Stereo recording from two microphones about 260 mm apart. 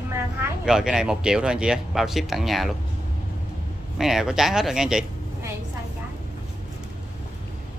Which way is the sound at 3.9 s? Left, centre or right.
Centre.